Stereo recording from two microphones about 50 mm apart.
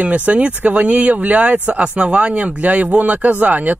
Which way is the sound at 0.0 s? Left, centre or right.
Right.